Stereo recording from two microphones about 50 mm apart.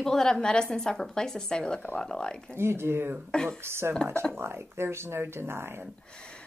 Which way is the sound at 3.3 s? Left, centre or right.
Centre.